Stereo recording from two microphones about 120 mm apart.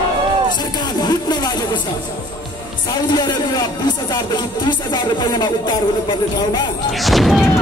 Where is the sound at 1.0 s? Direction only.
35° left (ahead or behind).